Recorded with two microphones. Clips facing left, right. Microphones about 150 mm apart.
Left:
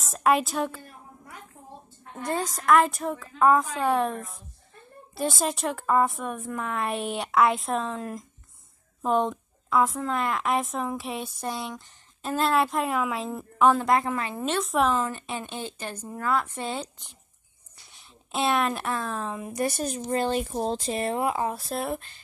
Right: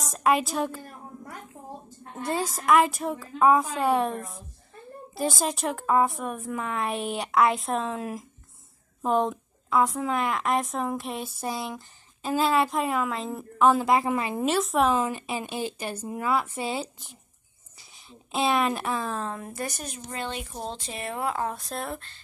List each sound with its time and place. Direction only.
0.0 s a woman's voice: centre (ahead or behind)
0.8 s a sound: 40° right (ahead or behind)
2.2 s a woman's voice: 5° right (ahead or behind)
19.5 s speech: 25° left (ahead or behind)
21.2 s speech: 15° left (ahead or behind)
21.5 s a woman's voice: 5° left (ahead or behind)
21.9 s speech: 15° left (ahead or behind)